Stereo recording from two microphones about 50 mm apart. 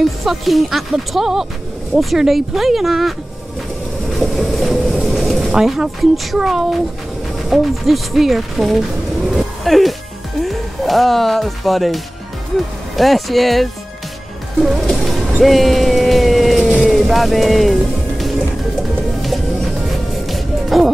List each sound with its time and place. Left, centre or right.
0.2 s speech: centre
4.2 s vehicle: centre
5.5 s speech: centre
14.6 s music: centre
15.4 s vehicle: centre
16.8 s music: centre